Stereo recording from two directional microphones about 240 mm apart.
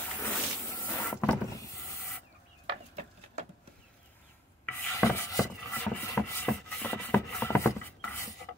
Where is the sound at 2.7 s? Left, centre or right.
Right.